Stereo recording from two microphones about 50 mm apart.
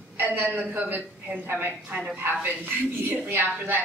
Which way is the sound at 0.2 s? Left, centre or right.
Right.